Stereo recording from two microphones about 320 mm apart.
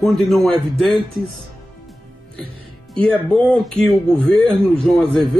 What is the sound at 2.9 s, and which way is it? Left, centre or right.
Speech, centre.